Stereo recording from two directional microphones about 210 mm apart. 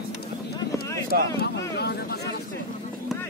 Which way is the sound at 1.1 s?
45° right (ahead or behind).